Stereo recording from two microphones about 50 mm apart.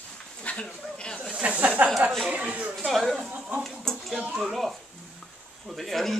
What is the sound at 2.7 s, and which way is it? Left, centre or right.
Speech, centre.